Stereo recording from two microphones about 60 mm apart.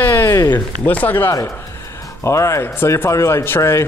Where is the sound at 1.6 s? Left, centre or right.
Left.